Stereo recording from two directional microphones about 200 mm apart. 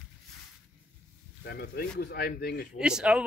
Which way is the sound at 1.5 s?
50° left (ahead or behind).